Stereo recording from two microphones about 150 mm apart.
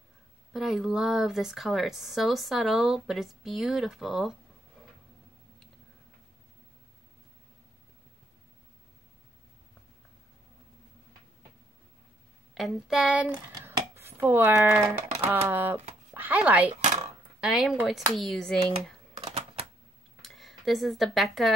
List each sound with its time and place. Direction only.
0.5 s speech: centre (ahead or behind)
12.5 s speech: centre (ahead or behind)
13.5 s a sound: 15° right (ahead or behind)
15.1 s speech: 15° right (ahead or behind); by 18.9 s 5° left (ahead or behind)
19.2 s a sound: 40° right (ahead or behind)
20.2 s speech: centre (ahead or behind)